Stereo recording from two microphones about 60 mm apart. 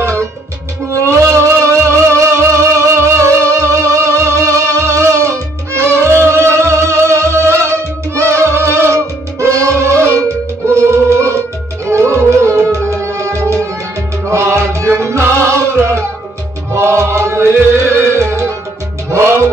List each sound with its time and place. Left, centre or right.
0.0 s music: right